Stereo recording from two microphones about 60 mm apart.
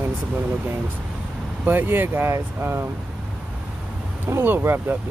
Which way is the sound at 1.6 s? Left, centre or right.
Right.